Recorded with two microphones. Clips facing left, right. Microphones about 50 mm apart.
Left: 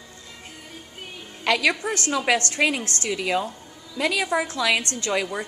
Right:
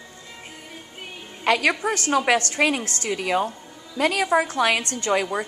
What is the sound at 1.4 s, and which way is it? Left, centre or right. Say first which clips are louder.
A woman's voice: right 1 dB; right.